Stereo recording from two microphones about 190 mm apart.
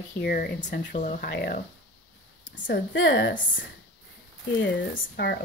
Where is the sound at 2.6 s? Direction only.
50° left (ahead or behind).